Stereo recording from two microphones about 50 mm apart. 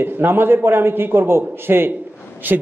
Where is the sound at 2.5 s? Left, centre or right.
Right.